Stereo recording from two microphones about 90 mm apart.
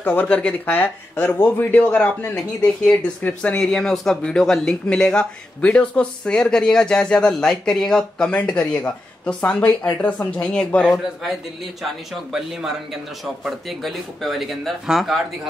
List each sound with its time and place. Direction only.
0.0 s speech: 20° left (ahead or behind)
11.8 s speech: 5° right (ahead or behind)